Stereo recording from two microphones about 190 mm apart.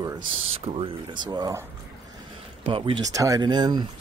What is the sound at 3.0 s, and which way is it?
Speech, 15° right (ahead or behind).